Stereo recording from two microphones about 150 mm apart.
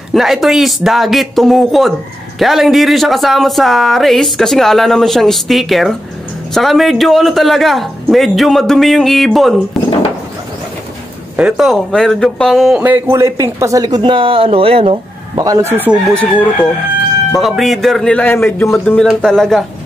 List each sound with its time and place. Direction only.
0.1 s speech: centre (ahead or behind)
11.3 s speech: 5° right (ahead or behind); by 15.0 s 40° right (ahead or behind)
15.3 s speech: 25° right (ahead or behind)
15.7 s speech: 10° right (ahead or behind)
17.3 s speech: centre (ahead or behind)